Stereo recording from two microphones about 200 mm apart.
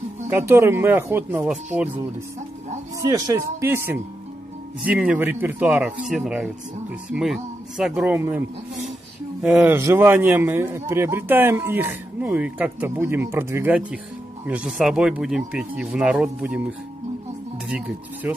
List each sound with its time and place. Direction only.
0.3 s a man's voice: 10° right (ahead or behind)
3.0 s a man's voice: 20° right (ahead or behind)
17.6 s speech: 5° right (ahead or behind)